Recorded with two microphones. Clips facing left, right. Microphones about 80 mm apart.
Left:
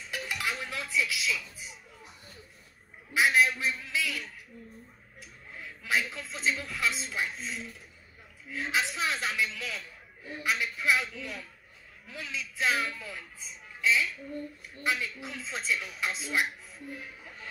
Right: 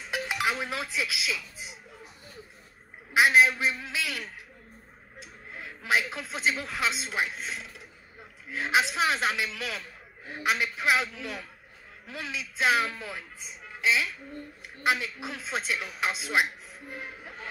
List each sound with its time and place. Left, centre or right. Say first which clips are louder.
0.1 s music: right 5 dB; right
0.9 s speech: left 1 dB; right
3.1 s speech: right 4 dB; right
5.2 s a sound: right 3 dB; right
6.6 s speech: right 2 dB; right
8.5 s speech: right 5 dB; right
16.9 s a sound: right 6 dB; right